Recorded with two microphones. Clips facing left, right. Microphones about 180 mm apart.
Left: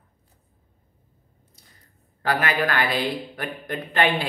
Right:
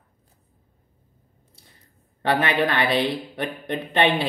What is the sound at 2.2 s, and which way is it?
Speech, 25° right (ahead or behind).